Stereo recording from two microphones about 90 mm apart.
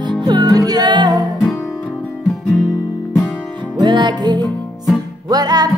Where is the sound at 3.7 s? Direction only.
55° right (ahead or behind).